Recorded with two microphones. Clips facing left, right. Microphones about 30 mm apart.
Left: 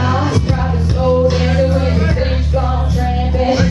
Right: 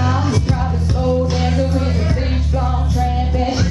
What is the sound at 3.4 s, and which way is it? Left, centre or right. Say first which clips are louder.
Music: left 7 dB; left.